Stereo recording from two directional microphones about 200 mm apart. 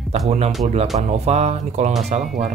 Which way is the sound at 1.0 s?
30° right (ahead or behind).